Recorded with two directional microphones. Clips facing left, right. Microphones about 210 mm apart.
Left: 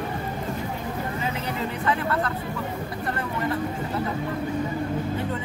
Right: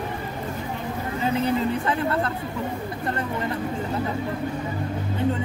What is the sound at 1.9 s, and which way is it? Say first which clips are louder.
Speech: right 1 dB; 30° right (ahead or behind).